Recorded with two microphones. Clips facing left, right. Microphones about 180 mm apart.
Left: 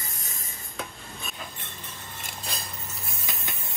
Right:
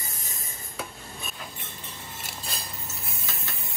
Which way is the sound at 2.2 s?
Centre (ahead or behind).